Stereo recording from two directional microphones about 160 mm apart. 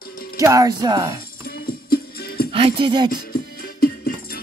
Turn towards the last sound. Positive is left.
turn(degrees=70)  # may be behind; listen again after turning